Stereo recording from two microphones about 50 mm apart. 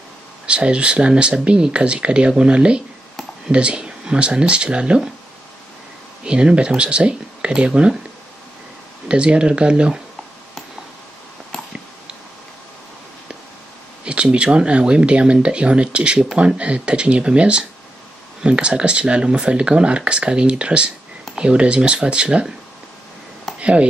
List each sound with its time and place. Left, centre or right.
0.5 s speech: right
6.2 s speech: centre
9.1 s speech: right
14.0 s speech: right
23.6 s speech: right